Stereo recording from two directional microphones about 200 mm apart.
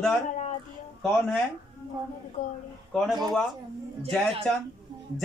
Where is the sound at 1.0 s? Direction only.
Centre (ahead or behind).